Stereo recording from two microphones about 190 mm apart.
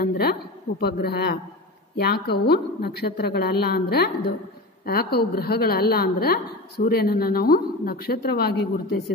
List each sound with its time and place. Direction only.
0.0 s a woman's voice: 55° left (ahead or behind)